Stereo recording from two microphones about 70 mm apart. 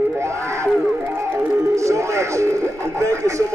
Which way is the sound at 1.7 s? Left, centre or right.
Right.